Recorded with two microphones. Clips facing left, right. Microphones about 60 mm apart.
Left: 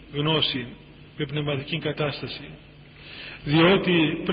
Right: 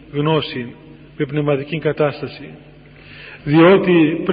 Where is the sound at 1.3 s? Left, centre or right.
Right.